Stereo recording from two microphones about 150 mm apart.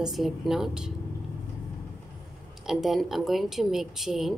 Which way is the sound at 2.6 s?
Centre (ahead or behind).